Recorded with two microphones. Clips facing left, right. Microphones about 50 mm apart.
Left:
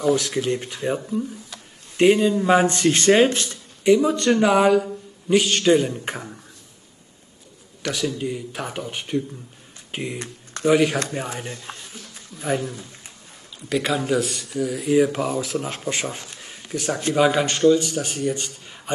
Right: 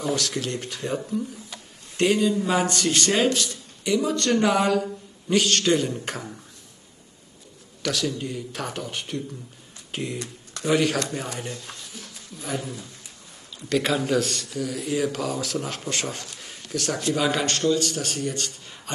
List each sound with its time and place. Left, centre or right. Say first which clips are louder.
0.2 s a man's voice: left 4 dB; centre
4.3 s speech: left 5 dB; centre
7.8 s speech: left 2 dB; centre
9.8 s a sound: left 1 dB; centre
10.1 s speech: left 1 dB; left
10.7 s speech: left 3 dB; centre
11.4 s a sound: left 1 dB; left
13.6 s a man's voice: left 1 dB; centre
16.6 s a sound: left 2 dB; centre
17.3 s speech: left 6 dB; centre